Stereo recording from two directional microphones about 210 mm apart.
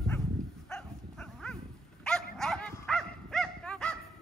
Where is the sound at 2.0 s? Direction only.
5° left (ahead or behind).